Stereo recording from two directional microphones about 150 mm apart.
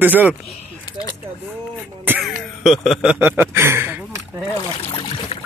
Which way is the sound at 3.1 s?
10° right (ahead or behind).